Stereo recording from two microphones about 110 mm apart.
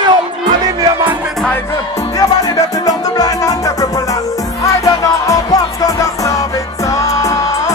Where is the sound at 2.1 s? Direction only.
35° left (ahead or behind).